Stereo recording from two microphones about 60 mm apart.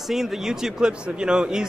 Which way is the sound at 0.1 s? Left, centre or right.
Centre.